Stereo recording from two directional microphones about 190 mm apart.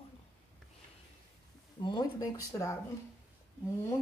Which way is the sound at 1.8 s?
20° left (ahead or behind).